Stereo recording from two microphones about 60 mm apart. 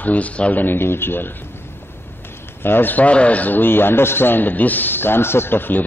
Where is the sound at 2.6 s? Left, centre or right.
Left.